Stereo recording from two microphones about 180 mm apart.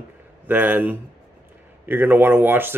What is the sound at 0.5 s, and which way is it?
Speech, 10° right (ahead or behind).